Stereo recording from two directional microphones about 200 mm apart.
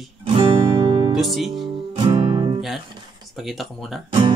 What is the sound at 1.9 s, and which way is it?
Music, 20° right (ahead or behind).